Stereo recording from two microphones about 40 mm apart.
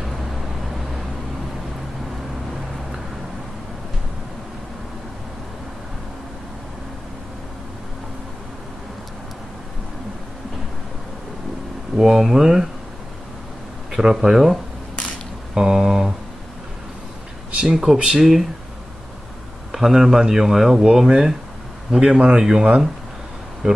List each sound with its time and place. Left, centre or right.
12.0 s speech: centre
13.9 s speech: centre
17.6 s speech: centre
19.7 s speech: centre